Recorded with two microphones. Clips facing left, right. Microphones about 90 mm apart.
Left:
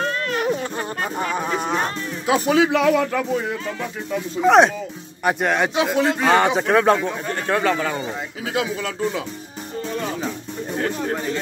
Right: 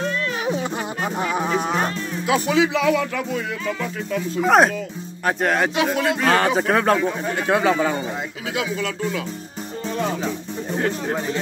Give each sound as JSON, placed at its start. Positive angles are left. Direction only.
{"t": 0.0, "sound": "a sound", "side_deg": 50}
{"t": 0.4, "sound": "music", "side_deg": -5}
{"t": 2.2, "sound": "music", "side_deg": 40}
{"t": 4.4, "sound": "speech", "side_deg": 0}
{"t": 8.5, "sound": "music", "side_deg": 35}
{"t": 10.0, "sound": "speech", "side_deg": 0}